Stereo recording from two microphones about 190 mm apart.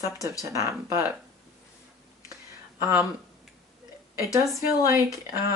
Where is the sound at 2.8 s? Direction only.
15° right (ahead or behind).